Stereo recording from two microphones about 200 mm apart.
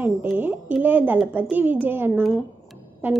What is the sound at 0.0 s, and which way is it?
A woman's voice, 10° right (ahead or behind).